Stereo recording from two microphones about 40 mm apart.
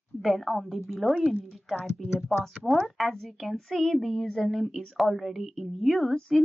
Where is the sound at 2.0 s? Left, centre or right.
Centre.